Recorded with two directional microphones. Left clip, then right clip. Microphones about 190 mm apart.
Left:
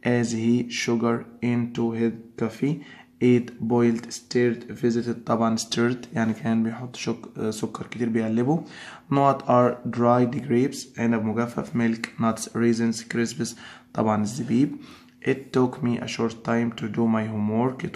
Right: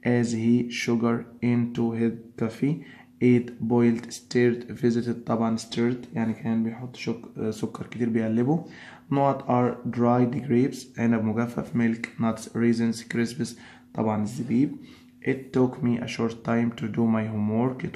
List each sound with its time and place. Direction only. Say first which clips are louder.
0.0 s speech: left 1 dB; centre (ahead or behind)
9.1 s speech: left 4 dB; 15° left (ahead or behind)
13.9 s speech: left 3 dB; 20° left (ahead or behind)